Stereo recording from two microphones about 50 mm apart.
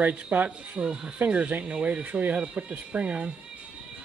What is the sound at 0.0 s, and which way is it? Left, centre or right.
Speech, right.